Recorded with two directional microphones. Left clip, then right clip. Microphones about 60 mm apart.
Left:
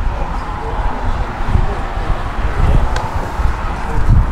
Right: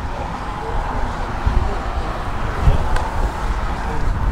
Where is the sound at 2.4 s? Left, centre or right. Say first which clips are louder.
Left 2 dB; right.